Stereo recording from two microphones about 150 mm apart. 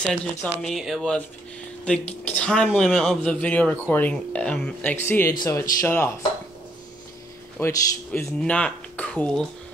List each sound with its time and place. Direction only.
0.0 s speech: 5° left (ahead or behind)
7.5 s speech: 10° left (ahead or behind)